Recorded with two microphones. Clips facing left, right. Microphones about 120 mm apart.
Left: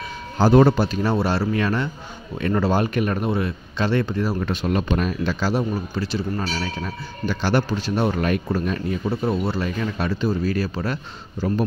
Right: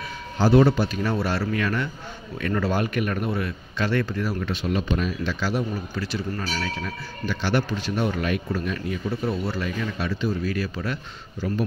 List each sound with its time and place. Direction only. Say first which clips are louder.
0.4 s speech: left 3 dB; 45° left (ahead or behind); by 4.4 s 25° left (ahead or behind)
4.4 s speech: left 3 dB; 45° left (ahead or behind); by 9.7 s 25° left (ahead or behind)
9.9 s speech: left 3 dB; 40° left (ahead or behind)